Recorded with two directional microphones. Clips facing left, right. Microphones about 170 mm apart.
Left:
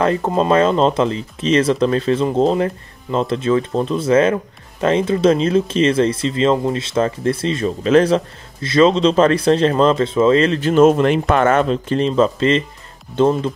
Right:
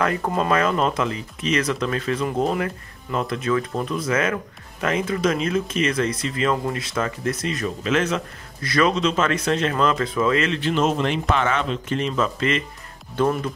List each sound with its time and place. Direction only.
0.0 s speech: 25° left (ahead or behind)
10.6 s speech: 45° left (ahead or behind); by 13.5 s 25° left (ahead or behind)